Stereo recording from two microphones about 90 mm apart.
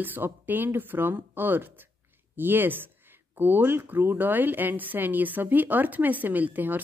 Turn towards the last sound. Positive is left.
turn(degrees=-20)  # may be behind; listen again after turning